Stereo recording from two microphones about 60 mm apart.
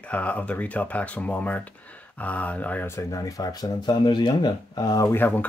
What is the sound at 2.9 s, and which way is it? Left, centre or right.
Speech, left.